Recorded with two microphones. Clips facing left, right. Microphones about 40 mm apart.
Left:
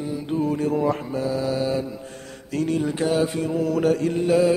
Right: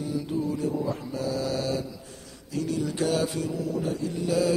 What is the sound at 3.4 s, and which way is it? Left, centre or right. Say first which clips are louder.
Mantra: left 7 dB; left.